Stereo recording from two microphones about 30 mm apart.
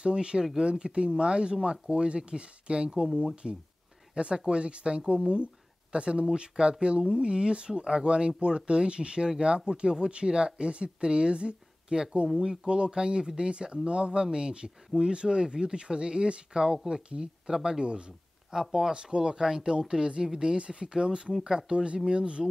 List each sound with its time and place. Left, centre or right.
0.0 s speech: right
16.5 s speech: right
17.5 s speech: right
18.5 s speech: centre
18.9 s speech: right
21.3 s speech: centre
21.5 s speech: right